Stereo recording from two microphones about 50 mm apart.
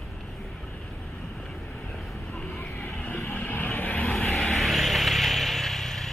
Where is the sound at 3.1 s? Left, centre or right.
Left.